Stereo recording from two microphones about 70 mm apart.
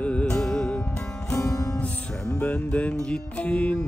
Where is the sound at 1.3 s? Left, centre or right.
Left.